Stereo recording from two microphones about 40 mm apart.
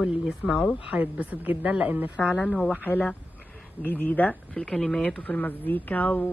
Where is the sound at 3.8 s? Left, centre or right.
Left.